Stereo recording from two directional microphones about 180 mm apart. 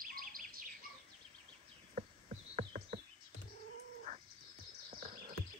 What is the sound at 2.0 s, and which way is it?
Insect, 40° right (ahead or behind).